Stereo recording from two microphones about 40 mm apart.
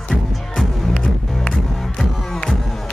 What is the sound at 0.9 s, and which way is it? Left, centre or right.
Music, centre.